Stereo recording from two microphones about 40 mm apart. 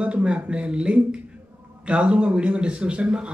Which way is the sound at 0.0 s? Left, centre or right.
Right.